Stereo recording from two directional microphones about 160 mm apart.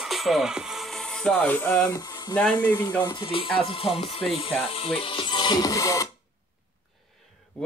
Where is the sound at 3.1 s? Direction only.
30° left (ahead or behind).